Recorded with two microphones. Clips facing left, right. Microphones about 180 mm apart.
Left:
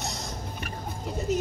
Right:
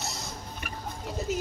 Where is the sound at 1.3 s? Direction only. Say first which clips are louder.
Left 5 dB; centre (ahead or behind).